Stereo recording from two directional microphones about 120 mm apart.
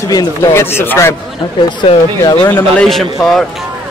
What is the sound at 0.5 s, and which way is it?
Speech, 20° left (ahead or behind).